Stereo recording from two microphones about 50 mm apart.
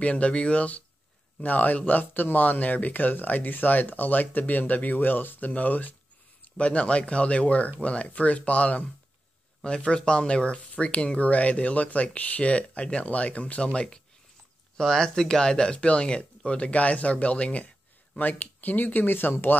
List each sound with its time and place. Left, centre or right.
0.0 s speech: left